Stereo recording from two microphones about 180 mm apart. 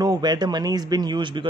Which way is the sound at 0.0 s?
20° right (ahead or behind).